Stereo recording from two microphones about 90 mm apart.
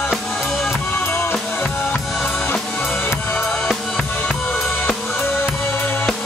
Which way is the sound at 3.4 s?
5° left (ahead or behind).